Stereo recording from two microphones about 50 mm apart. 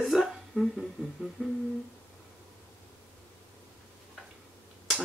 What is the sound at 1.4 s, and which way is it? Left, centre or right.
Humming, right.